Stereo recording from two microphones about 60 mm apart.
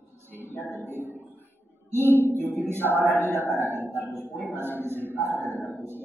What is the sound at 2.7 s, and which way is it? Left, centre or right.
Speech, right.